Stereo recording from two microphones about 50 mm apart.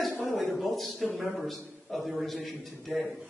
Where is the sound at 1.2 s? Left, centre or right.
Centre.